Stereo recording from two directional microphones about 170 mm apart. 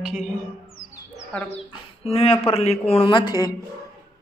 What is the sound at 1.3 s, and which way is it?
Speech, 10° left (ahead or behind).